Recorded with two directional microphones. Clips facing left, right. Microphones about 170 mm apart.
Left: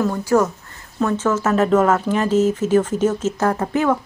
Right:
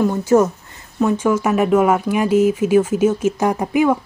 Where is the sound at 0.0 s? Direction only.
20° right (ahead or behind).